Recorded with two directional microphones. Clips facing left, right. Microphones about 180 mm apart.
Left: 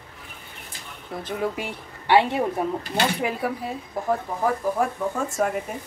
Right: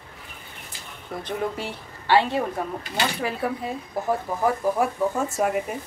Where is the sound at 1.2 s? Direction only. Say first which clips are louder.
Left 1 dB; 15° left (ahead or behind).